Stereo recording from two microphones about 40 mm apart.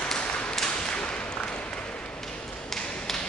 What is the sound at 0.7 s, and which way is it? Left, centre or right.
Whip, left.